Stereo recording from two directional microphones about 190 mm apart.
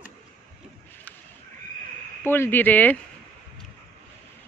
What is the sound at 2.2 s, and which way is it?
Speech, 10° left (ahead or behind).